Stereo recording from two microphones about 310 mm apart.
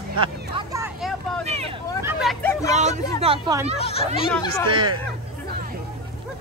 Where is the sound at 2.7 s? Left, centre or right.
Right.